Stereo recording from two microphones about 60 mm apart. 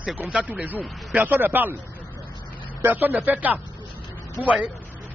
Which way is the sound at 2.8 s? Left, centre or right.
Right.